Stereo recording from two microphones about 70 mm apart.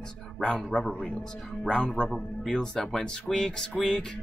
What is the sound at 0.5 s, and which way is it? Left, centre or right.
Speech, centre.